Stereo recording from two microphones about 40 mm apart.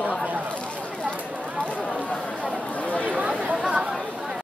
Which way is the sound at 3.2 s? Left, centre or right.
Right.